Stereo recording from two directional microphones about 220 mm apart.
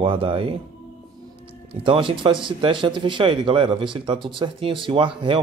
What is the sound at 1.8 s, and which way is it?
Speech, 25° right (ahead or behind).